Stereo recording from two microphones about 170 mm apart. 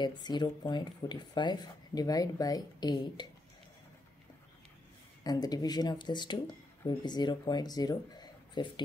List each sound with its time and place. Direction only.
0.0 s speech: 25° left (ahead or behind)
5.2 s speech: 20° left (ahead or behind)